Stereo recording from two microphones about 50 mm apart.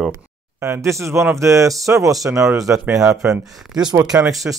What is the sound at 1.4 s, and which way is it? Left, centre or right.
Speech, right.